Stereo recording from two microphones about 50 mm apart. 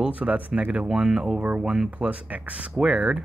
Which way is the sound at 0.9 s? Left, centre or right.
Centre.